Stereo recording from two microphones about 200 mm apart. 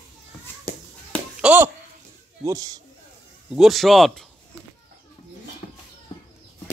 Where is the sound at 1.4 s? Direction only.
10° right (ahead or behind).